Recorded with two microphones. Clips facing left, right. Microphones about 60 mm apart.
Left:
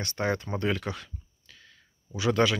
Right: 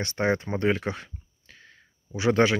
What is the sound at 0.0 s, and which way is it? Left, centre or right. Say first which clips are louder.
Speech: right 4 dB; right.